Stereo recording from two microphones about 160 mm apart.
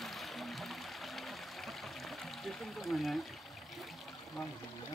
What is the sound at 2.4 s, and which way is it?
Speech, centre (ahead or behind).